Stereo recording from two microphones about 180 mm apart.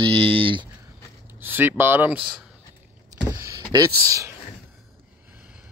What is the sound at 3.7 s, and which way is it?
Speech, 20° right (ahead or behind).